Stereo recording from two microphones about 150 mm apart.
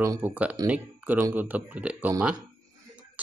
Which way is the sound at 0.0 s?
15° right (ahead or behind).